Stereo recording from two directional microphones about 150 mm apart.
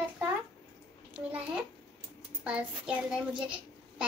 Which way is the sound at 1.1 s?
5° right (ahead or behind).